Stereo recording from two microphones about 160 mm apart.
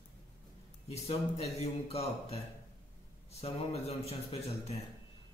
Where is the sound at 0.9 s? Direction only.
40° left (ahead or behind).